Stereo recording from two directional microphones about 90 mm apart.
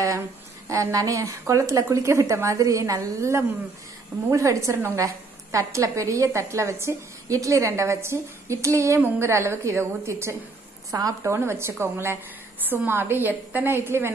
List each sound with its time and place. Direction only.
0.7 s a woman's voice: 40° right (ahead or behind)
10.9 s a woman's voice: 40° right (ahead or behind)
11.3 s a woman's voice: 30° right (ahead or behind)